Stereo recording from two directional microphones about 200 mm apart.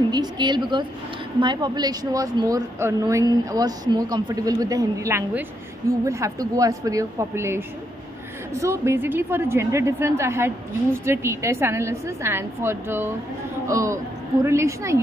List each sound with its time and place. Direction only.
0.1 s a woman's voice: 20° right (ahead or behind)